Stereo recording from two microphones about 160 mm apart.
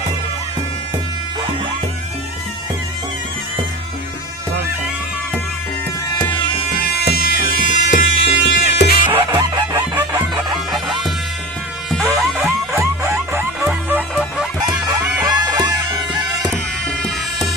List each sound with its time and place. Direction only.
6.8 s music: 85° left
9.1 s chicken: 30° right (ahead or behind)
10.7 s music: centre (ahead or behind)
12.0 s music: 15° right (ahead or behind)
15.4 s music: 25° right (ahead or behind)